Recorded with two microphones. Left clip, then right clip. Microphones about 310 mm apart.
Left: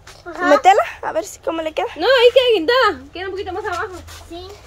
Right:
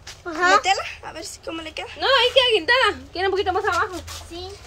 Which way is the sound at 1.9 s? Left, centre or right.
Left.